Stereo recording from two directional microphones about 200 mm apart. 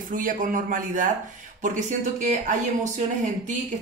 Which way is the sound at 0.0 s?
40° right (ahead or behind).